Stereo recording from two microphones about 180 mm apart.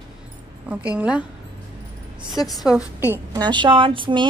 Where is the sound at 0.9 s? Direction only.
5° right (ahead or behind).